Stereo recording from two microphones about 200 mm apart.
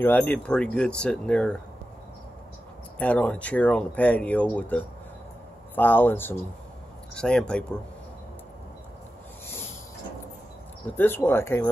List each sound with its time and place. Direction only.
0.0 s speech: 10° left (ahead or behind)
3.0 s speech: 5° left (ahead or behind)
11.0 s speech: 10° left (ahead or behind)